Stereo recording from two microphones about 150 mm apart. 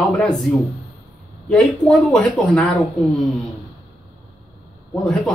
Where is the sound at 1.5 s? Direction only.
5° left (ahead or behind).